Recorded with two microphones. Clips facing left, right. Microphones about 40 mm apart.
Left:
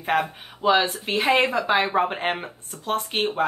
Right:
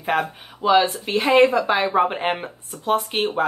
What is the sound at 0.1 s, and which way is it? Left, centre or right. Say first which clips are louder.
Speech: even; centre.